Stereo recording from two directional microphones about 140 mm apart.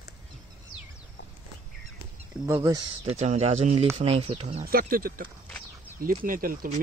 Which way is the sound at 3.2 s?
50° right (ahead or behind).